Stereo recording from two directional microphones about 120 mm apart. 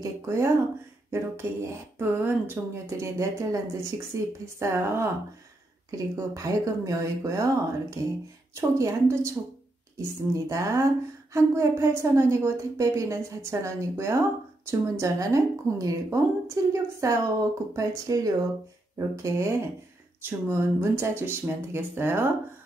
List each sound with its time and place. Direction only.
0.0 s speech: 25° right (ahead or behind)